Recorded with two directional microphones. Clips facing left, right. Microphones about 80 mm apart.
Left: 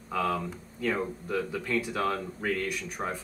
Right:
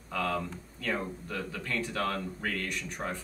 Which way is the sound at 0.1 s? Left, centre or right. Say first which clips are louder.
Left 3 dB; centre.